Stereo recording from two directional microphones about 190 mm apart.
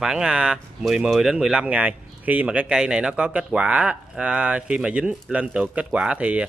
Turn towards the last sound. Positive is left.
turn(degrees=-5)  # may be behind; listen again after turning